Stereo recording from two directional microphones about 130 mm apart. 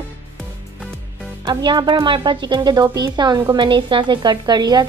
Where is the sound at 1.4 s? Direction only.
35° right (ahead or behind).